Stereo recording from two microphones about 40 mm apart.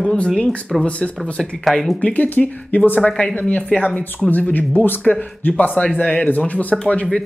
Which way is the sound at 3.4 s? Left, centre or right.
Left.